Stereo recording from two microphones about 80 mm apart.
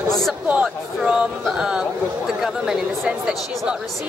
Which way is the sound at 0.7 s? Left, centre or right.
Centre.